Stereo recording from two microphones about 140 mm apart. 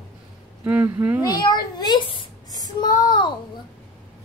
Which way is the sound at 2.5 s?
25° left (ahead or behind).